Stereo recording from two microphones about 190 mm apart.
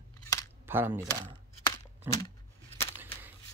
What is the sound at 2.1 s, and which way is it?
Speech, 10° right (ahead or behind).